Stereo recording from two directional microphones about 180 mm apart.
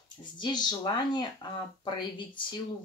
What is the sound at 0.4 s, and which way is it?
Speech, 25° left (ahead or behind).